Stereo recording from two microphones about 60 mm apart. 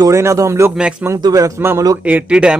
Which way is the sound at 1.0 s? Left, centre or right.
Right.